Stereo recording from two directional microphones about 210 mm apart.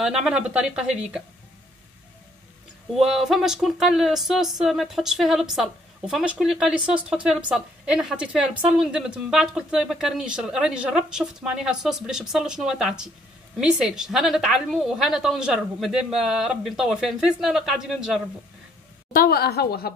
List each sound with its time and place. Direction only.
0.0 s speech: 5° right (ahead or behind)
3.0 s speech: centre (ahead or behind)
19.1 s a woman's voice: 45° left (ahead or behind)